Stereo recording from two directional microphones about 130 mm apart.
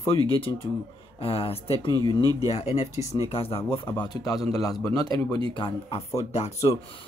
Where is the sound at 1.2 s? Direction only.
45° left (ahead or behind).